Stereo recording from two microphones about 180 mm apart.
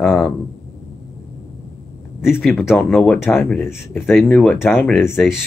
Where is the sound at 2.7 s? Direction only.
5° left (ahead or behind).